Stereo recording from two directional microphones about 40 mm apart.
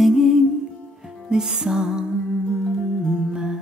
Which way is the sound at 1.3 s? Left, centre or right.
Centre.